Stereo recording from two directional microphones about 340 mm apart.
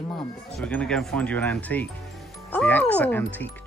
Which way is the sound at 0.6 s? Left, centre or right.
Centre.